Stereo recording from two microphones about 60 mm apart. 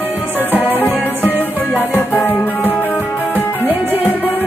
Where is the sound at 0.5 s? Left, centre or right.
Left.